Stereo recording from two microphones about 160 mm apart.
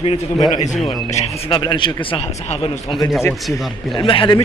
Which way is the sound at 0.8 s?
40° left (ahead or behind).